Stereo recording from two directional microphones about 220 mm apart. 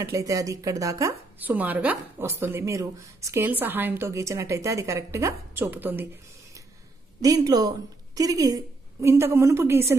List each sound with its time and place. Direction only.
0.0 s speech: 15° right (ahead or behind)
7.2 s speech: 15° right (ahead or behind)